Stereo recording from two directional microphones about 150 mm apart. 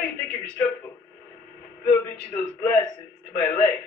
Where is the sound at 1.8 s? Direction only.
15° left (ahead or behind).